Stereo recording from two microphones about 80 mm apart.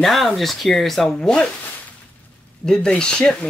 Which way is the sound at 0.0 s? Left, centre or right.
Centre.